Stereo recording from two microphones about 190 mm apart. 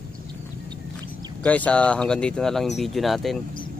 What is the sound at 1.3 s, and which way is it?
Speech, 5° left (ahead or behind).